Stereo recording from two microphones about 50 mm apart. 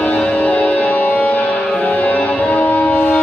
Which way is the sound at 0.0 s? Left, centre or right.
Left.